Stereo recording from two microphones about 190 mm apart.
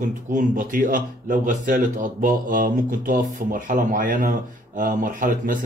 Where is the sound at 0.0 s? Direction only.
40° right (ahead or behind).